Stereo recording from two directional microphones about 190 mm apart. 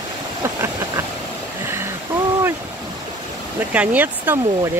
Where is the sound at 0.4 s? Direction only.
15° right (ahead or behind).